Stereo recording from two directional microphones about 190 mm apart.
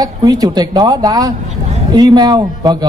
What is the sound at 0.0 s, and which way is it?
A man's voice, 20° right (ahead or behind).